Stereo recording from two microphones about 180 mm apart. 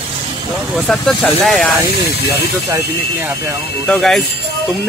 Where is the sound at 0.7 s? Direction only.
Centre (ahead or behind).